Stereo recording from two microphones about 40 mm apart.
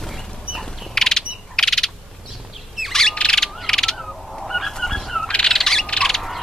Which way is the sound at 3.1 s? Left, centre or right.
Left.